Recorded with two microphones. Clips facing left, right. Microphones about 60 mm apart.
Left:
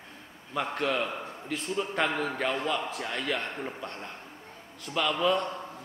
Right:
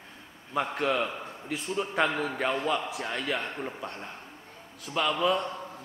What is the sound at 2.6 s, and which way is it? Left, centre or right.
Speech, centre.